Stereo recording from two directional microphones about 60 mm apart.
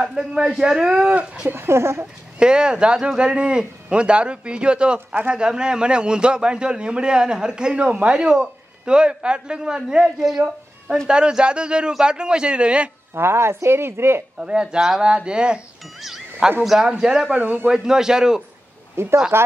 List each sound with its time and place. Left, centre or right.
0.0 s a man's voice: centre
1.5 s speech: right
2.3 s a man's voice: centre
13.1 s speech: right
14.4 s a man's voice: centre
16.0 s music: centre
16.6 s a man's voice: centre
17.4 s speech: right
17.6 s a man's voice: centre
19.0 s speech: right